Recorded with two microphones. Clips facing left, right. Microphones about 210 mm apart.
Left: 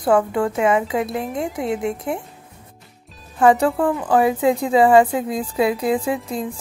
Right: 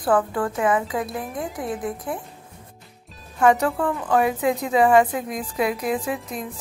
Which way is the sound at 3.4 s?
30° left (ahead or behind).